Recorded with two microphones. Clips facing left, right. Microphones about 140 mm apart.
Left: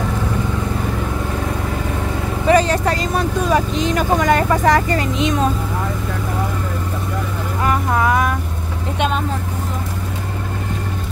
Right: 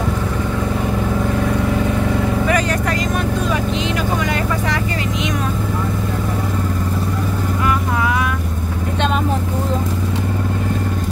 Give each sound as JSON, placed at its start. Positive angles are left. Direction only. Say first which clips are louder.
{"t": 2.4, "sound": "vehicle", "louder": "left 4 dB", "side_deg": 30}
{"t": 7.6, "sound": "vehicle", "louder": "left 3 dB", "side_deg": 45}